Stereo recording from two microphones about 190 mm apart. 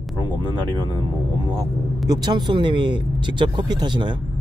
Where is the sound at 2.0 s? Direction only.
20° right (ahead or behind).